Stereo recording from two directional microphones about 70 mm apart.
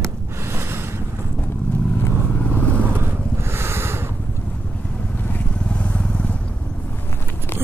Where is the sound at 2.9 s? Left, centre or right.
Right.